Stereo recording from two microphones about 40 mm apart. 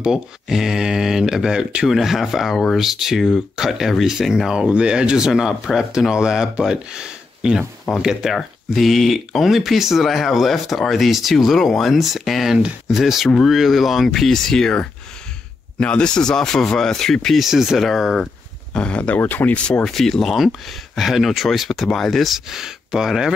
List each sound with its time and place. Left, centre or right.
0.0 s speech: centre
1.9 s speech: centre
8.3 s speech: centre
15.8 s speech: left; by 17.4 s centre
17.4 s speech: centre
18.7 s speech: left
19.1 s speech: left
19.8 s speech: centre
22.5 s speech: centre